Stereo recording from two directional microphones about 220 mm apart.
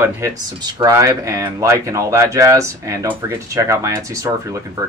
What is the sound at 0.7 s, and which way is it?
Speech, 15° right (ahead or behind).